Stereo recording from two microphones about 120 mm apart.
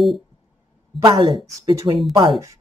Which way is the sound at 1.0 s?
40° right (ahead or behind).